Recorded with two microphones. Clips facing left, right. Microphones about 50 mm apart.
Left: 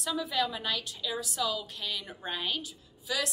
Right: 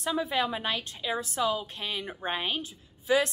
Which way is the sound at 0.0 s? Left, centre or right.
Right.